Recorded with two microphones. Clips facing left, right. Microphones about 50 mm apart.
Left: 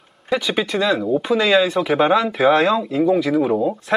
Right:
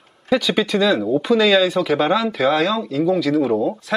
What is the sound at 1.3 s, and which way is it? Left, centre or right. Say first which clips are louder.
Speech: right 1 dB; centre.